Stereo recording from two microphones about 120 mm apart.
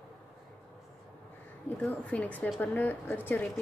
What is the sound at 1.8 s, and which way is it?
A woman's voice, 10° left (ahead or behind).